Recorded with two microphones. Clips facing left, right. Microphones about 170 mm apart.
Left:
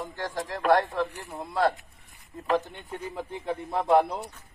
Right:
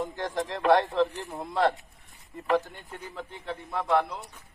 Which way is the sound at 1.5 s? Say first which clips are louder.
Even; centre (ahead or behind).